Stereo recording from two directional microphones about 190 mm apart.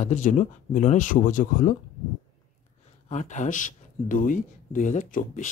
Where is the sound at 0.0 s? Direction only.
40° left (ahead or behind).